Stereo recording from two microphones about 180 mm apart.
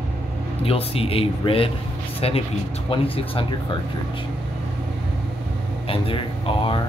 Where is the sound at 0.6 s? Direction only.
30° left (ahead or behind).